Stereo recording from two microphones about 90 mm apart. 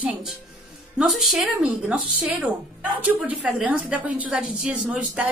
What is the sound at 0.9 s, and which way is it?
A woman's voice, 5° right (ahead or behind).